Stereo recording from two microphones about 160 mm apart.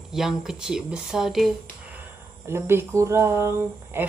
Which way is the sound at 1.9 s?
15° right (ahead or behind).